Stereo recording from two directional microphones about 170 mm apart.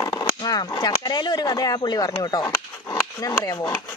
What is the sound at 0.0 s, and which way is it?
Speech, 25° left (ahead or behind).